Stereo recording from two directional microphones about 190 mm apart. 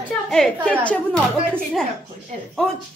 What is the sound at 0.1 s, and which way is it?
A woman's voice, 5° left (ahead or behind).